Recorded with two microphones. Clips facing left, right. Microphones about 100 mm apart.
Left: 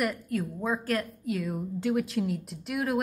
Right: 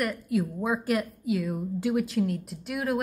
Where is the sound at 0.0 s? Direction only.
Centre (ahead or behind).